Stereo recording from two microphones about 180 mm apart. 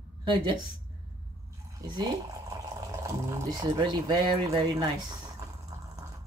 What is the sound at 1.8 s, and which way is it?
Speech, 25° right (ahead or behind).